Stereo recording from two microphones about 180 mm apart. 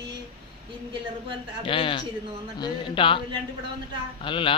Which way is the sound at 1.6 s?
30° left (ahead or behind).